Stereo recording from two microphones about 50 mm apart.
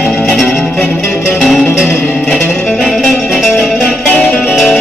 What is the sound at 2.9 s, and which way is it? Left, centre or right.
Music, centre.